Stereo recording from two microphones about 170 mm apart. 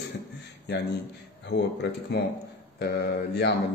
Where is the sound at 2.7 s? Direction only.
70° left (ahead or behind).